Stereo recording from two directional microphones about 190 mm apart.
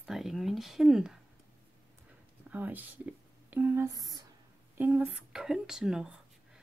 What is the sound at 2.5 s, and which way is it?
Speech, 10° right (ahead or behind).